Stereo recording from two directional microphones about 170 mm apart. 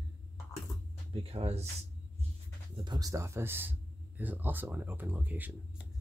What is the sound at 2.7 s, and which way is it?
Speech, 25° right (ahead or behind).